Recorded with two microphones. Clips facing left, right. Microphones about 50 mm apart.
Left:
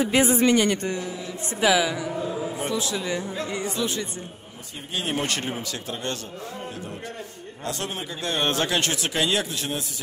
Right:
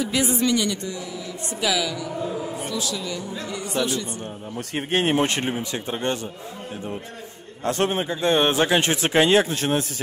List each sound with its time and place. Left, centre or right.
0.0 s speech: left
1.6 s a woman's voice: left
5.0 s speech: right
7.6 s speech: right
8.4 s speech: centre; by 9.8 s right